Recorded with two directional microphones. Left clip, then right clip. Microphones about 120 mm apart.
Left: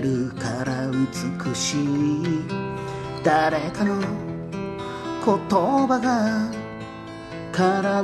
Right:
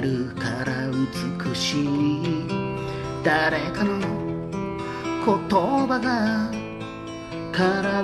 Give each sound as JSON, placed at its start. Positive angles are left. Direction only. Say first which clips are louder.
{"t": 0.4, "sound": "music", "louder": "even", "side_deg": 50}
{"t": 3.3, "sound": "music", "louder": "left 2 dB", "side_deg": 50}
{"t": 5.2, "sound": "music", "louder": "left 1 dB", "side_deg": 50}
{"t": 7.5, "sound": "music", "louder": "left 2 dB", "side_deg": 45}